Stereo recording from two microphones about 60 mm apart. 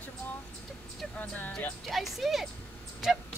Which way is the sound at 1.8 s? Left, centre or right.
Centre.